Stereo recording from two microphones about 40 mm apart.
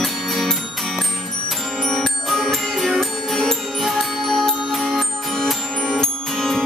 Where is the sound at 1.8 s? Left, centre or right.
Centre.